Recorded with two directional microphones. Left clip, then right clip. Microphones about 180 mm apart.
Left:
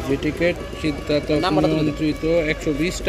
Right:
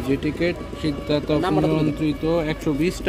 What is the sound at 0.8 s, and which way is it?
Speech, 40° right (ahead or behind).